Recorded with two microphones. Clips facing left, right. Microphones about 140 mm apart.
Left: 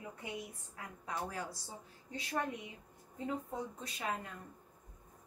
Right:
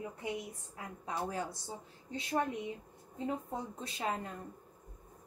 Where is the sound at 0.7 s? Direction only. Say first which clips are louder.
Right 3 dB; 25° right (ahead or behind).